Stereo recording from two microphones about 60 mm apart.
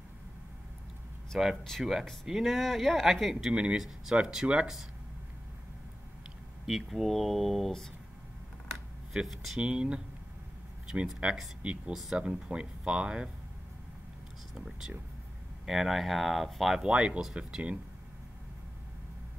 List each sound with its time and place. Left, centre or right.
1.6 s speech: centre
3.5 s speech: centre
6.6 s speech: centre
9.1 s speech: centre
9.6 s speech: centre
11.2 s speech: centre
11.9 s speech: centre
14.5 s speech: centre
16.8 s speech: centre